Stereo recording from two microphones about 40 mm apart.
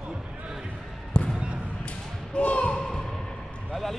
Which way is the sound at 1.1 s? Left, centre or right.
Left.